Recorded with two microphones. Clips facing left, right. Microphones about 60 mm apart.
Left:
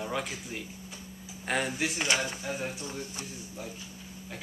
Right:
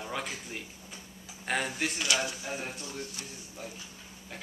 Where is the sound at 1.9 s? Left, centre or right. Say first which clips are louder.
Left 1 dB; left.